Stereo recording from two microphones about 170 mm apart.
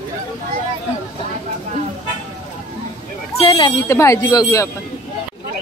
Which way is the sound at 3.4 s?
25° left (ahead or behind).